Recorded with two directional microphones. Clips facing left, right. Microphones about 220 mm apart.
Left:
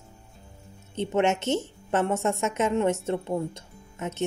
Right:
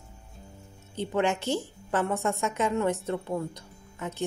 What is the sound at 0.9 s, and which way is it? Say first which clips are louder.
Speech: left 3 dB; 25° left (ahead or behind).